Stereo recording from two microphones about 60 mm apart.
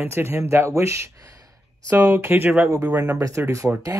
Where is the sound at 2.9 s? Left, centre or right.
Right.